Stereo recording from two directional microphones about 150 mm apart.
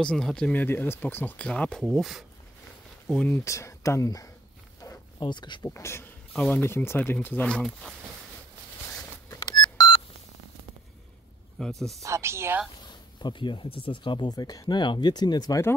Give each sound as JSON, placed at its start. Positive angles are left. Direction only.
{"t": 0.0, "sound": "speech", "side_deg": 5}
{"t": 3.4, "sound": "speech", "side_deg": 20}
{"t": 9.4, "sound": "beep", "side_deg": 25}
{"t": 11.6, "sound": "speech", "side_deg": 5}
{"t": 12.0, "sound": "speech", "side_deg": -20}
{"t": 13.2, "sound": "speech", "side_deg": 30}